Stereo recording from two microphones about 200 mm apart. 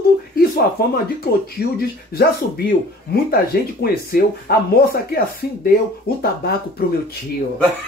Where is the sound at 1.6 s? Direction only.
50° left (ahead or behind).